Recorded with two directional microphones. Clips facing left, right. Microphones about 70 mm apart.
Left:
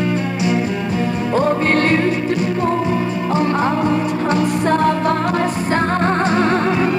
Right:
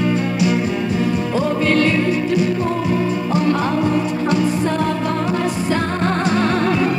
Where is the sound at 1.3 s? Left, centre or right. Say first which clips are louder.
Left 2 dB; left.